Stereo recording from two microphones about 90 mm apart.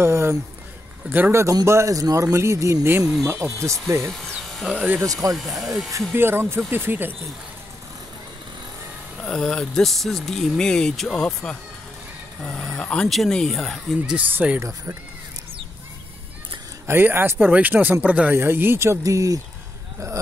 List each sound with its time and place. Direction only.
0.0 s speech: 30° right (ahead or behind)
1.5 s speech: 35° right (ahead or behind)
4.1 s electric shaver: centre (ahead or behind)
4.7 s speech: 20° right (ahead or behind)
5.0 s speech: 40° right (ahead or behind)
5.3 s speech: centre (ahead or behind)
6.1 s speech: 25° right (ahead or behind)
9.2 s speech: 5° left (ahead or behind)
14.0 s speech: 15° right (ahead or behind)
16.8 s speech: 25° right (ahead or behind)